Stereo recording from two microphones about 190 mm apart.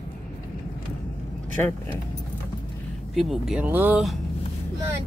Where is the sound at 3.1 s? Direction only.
Centre (ahead or behind).